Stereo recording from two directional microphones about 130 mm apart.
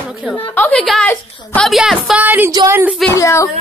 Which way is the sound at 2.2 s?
15° right (ahead or behind).